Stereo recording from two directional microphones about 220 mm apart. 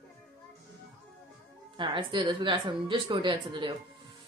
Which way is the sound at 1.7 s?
20° right (ahead or behind).